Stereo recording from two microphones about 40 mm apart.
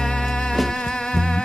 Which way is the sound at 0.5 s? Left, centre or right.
Centre.